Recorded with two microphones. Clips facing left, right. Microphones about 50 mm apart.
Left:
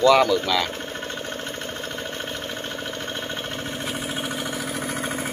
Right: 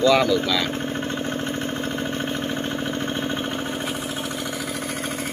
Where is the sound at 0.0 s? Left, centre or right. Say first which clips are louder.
Left 1 dB; left.